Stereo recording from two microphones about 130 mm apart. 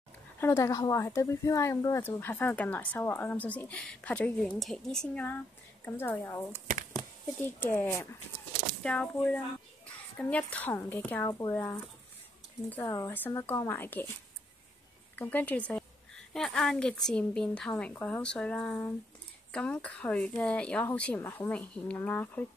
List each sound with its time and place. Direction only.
0.4 s speech: 20° left (ahead or behind)
8.8 s speech: 10° left (ahead or behind)
11.2 s speech: 25° left (ahead or behind)
11.5 s speech: 15° left (ahead or behind)
12.8 s speech: 25° left (ahead or behind)
15.1 s speech: 15° left (ahead or behind)